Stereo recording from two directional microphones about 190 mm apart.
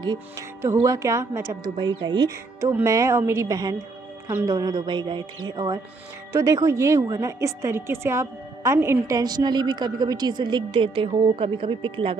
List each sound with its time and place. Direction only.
0.0 s a woman's voice: 20° right (ahead or behind)